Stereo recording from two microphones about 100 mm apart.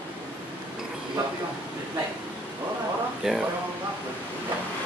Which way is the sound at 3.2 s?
5° right (ahead or behind).